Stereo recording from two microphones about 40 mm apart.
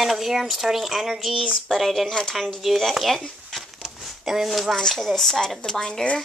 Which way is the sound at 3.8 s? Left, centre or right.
Centre.